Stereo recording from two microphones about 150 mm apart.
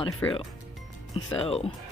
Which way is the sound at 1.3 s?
40° left (ahead or behind).